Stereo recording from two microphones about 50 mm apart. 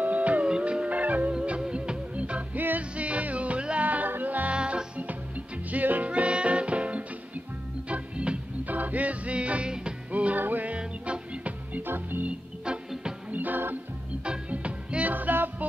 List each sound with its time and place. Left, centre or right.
0.0 s music: right
4.6 s music: right
8.6 s music: right
10.4 s music: right
10.7 s music: right
11.8 s music: right
13.3 s music: right
14.2 s music: right